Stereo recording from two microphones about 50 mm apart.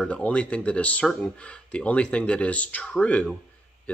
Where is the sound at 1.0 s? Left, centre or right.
Centre.